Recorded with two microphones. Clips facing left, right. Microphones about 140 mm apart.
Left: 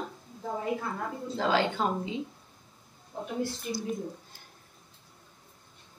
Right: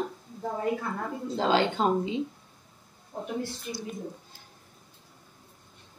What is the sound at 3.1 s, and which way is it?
Speech, 40° right (ahead or behind).